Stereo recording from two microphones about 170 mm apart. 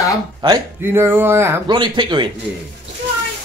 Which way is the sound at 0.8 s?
15° right (ahead or behind).